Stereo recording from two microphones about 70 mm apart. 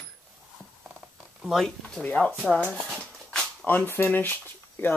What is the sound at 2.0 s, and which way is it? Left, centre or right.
Speech, centre.